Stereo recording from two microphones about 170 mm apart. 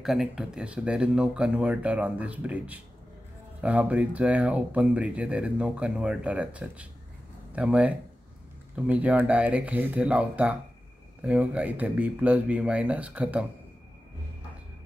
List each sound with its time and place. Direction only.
0.0 s speech: centre (ahead or behind)